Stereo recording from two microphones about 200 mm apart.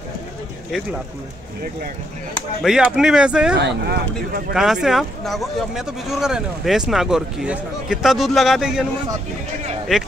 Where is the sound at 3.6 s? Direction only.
55° right (ahead or behind).